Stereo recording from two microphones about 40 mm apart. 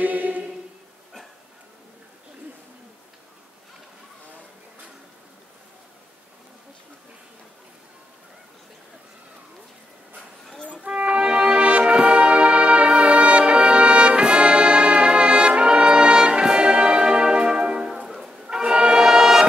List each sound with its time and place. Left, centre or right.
0.0 s music: right
11.1 s brass instrument: right
16.5 s music: right; by 18.3 s centre
18.3 s brass instrument: right